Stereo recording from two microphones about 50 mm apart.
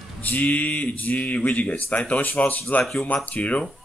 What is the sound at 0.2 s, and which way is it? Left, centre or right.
Speech, left.